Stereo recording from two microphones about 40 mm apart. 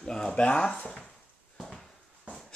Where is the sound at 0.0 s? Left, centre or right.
Left.